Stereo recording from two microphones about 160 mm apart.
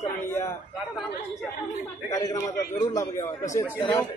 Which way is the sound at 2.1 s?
20° left (ahead or behind).